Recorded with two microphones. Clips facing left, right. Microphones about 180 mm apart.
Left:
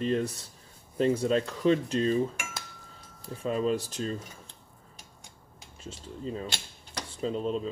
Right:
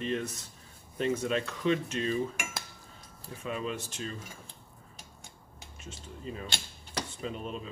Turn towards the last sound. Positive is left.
turn(degrees=30)  # may be behind; listen again after turning